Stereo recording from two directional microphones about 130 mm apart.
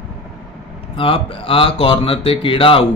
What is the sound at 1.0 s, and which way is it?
Speech, 45° left (ahead or behind).